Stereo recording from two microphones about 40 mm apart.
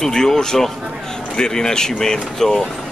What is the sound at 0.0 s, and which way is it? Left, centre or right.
Speech, centre.